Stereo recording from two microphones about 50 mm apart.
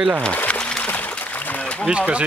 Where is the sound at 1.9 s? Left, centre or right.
Right.